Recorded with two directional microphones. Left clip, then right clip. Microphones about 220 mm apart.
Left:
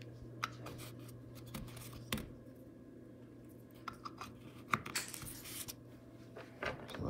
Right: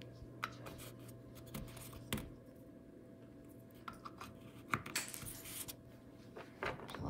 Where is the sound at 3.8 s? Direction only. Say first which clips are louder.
Left 3 dB; 10° right (ahead or behind).